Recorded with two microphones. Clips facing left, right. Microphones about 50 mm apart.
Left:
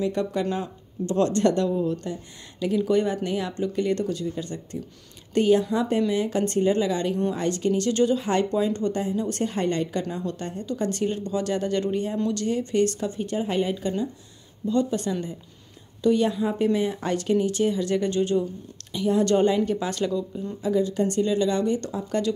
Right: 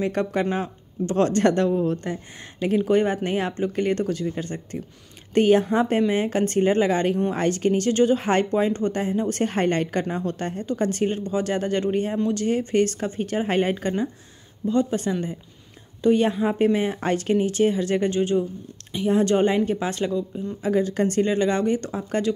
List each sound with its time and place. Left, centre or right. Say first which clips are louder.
0.0 s speech: right 2 dB; right
1.1 s speech: right 2 dB; right
14.7 s speech: right 2 dB; right
20.6 s speech: right 1 dB; right